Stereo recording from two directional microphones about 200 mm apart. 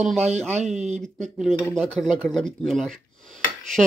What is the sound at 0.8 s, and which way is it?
Speech, 35° right (ahead or behind).